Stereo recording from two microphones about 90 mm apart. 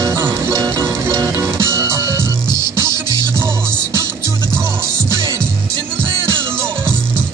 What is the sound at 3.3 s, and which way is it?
Music, 30° right (ahead or behind).